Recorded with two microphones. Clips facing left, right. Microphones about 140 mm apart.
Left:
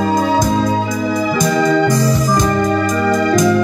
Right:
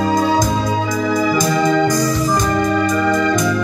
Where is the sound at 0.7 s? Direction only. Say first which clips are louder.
Left 1 dB; 25° left (ahead or behind).